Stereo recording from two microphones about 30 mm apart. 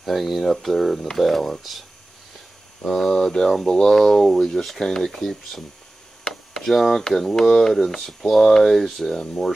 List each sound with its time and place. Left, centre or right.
0.0 s speech: centre
2.9 s speech: centre
6.6 s speech: centre